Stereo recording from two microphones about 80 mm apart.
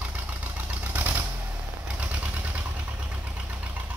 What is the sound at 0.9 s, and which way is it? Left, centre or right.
Typewriter, right.